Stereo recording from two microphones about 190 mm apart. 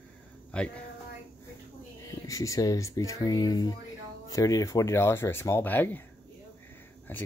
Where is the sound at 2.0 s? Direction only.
15° left (ahead or behind).